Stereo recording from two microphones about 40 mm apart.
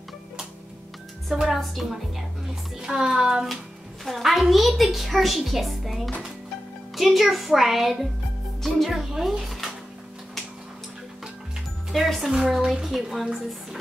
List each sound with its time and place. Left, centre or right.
1.3 s a woman's voice: centre
2.8 s speech: centre
4.0 s a child's voice: centre
11.9 s a child's voice: centre